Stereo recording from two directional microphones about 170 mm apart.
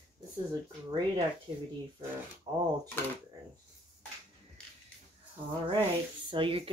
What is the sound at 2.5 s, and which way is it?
Speech, 25° right (ahead or behind).